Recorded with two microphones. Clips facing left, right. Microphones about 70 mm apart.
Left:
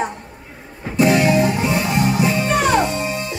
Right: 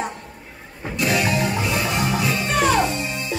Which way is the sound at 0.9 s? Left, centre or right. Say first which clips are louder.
Left 7 dB; left.